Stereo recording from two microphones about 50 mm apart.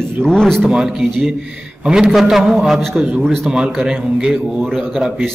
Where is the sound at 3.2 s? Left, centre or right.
Centre.